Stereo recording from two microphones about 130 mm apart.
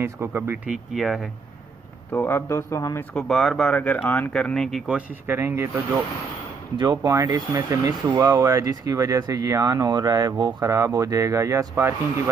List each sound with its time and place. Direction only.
0.0 s speech: 15° right (ahead or behind); by 1.3 s centre (ahead or behind)
2.1 s speech: 15° left (ahead or behind)
3.2 s speech: centre (ahead or behind)
5.2 s speech: 15° right (ahead or behind)
6.8 s speech: 30° right (ahead or behind)